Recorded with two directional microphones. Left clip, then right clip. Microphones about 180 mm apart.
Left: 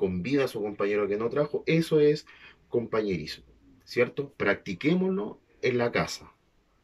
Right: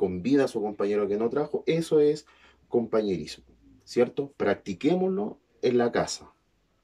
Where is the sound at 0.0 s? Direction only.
20° right (ahead or behind).